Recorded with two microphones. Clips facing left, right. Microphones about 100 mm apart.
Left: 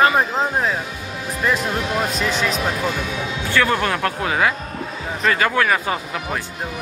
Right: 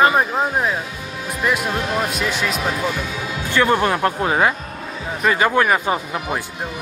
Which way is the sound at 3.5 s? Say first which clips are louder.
Right 3 dB; 20° right (ahead or behind).